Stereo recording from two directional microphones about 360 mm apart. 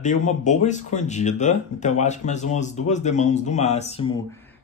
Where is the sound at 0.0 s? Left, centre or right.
Centre.